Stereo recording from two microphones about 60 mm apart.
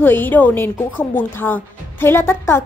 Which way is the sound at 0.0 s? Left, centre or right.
Left.